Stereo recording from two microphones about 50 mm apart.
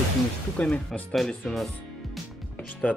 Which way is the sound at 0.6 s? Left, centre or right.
Left.